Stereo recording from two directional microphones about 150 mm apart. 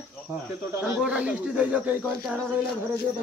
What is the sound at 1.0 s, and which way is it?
Speech, 10° right (ahead or behind).